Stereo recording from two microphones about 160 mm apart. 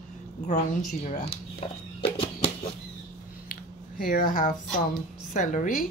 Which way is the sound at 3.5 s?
60° left (ahead or behind).